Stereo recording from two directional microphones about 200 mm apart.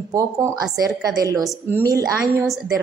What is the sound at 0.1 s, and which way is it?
A woman's voice, 15° right (ahead or behind).